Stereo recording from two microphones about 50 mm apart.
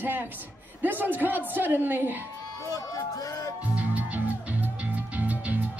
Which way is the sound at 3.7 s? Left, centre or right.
Right.